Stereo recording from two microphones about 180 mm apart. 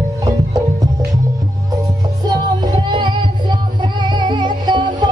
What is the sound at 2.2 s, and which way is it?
Music, 25° right (ahead or behind).